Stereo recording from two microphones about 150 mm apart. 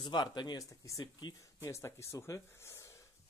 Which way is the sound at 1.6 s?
15° left (ahead or behind).